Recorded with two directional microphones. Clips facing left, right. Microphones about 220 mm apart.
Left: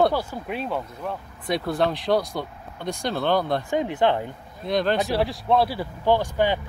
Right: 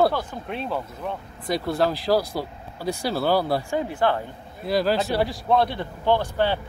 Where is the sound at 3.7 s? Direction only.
20° left (ahead or behind).